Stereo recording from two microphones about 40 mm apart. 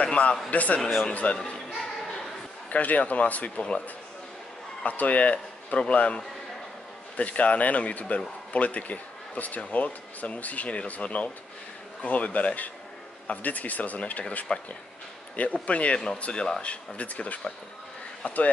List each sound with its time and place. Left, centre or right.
0.0 s a man's voice: left
0.7 s speech: centre
1.1 s speech: left
2.7 s speech: left
4.8 s speech: left
14.5 s speech: left
15.3 s speech: left